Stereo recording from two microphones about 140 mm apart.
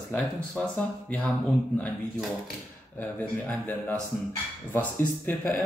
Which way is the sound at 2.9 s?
10° left (ahead or behind).